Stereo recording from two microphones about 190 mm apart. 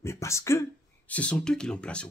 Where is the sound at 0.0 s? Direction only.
15° left (ahead or behind).